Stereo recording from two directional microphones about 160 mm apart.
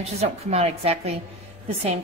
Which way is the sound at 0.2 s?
40° right (ahead or behind).